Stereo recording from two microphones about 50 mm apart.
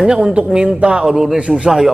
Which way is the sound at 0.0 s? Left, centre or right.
Centre.